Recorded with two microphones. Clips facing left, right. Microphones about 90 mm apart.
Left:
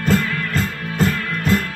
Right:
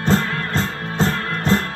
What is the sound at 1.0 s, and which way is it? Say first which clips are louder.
Music: left 1 dB; 30° right (ahead or behind).